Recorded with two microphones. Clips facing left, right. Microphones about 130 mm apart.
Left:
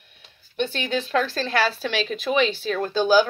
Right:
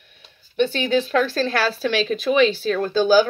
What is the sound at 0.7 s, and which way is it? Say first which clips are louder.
Speech: right 2 dB; 35° right (ahead or behind).